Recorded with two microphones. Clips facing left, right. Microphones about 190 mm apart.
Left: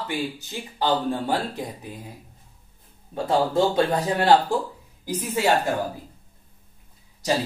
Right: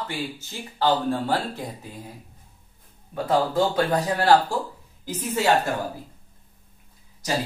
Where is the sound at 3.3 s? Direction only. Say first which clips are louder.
Left 1 dB; 25° left (ahead or behind).